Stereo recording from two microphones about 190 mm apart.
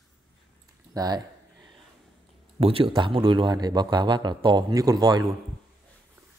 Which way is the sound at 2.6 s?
30° right (ahead or behind).